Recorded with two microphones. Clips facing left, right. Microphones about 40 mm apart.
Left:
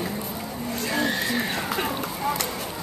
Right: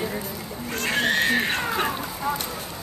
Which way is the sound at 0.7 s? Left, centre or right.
Right.